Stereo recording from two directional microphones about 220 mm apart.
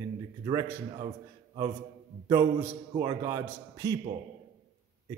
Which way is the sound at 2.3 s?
10° right (ahead or behind).